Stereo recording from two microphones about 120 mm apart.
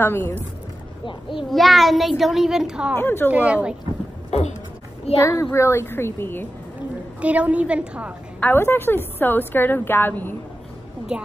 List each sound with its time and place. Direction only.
0.0 s a child's voice: 20° left (ahead or behind)
1.5 s a child's voice: centre (ahead or behind)
3.0 s a woman's voice: 20° left (ahead or behind)
3.3 s a woman's voice: 10° right (ahead or behind)
4.3 s a sound: 60° left (ahead or behind)
5.2 s a child's voice: 20° left (ahead or behind)
7.2 s a woman's voice: 10° right (ahead or behind)
8.4 s a woman's voice: 15° left (ahead or behind)
11.1 s a woman's voice: 5° right (ahead or behind)